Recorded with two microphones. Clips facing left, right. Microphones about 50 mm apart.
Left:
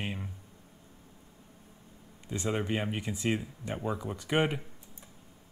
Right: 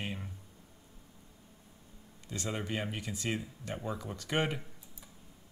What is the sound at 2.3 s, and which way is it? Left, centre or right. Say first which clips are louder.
Speech: left 5 dB; centre.